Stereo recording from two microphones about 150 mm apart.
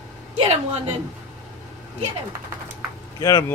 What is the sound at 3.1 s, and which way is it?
Speech, 20° left (ahead or behind).